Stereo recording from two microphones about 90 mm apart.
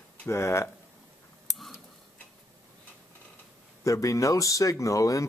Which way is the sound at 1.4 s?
Centre (ahead or behind).